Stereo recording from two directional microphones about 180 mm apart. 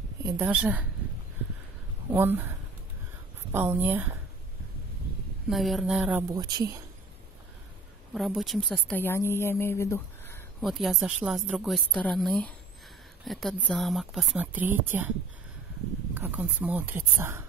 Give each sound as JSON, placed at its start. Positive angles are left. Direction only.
{"t": 0.2, "sound": "speech", "side_deg": -20}
{"t": 0.5, "sound": "speech", "side_deg": -10}
{"t": 2.0, "sound": "speech", "side_deg": -10}
{"t": 3.5, "sound": "speech", "side_deg": -10}
{"t": 5.5, "sound": "a woman's voice", "side_deg": 0}
{"t": 6.3, "sound": "speech", "side_deg": -20}
{"t": 8.1, "sound": "speech", "side_deg": 0}
{"t": 10.6, "sound": "a woman's voice", "side_deg": 0}
{"t": 16.2, "sound": "speech", "side_deg": -10}